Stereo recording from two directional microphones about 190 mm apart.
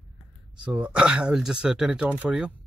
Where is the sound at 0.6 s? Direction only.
5° right (ahead or behind).